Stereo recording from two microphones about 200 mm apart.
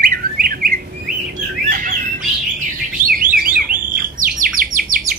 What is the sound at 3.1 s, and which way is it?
Alarm, 45° right (ahead or behind).